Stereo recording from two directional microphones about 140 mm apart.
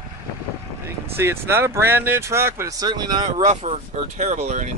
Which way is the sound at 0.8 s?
20° right (ahead or behind).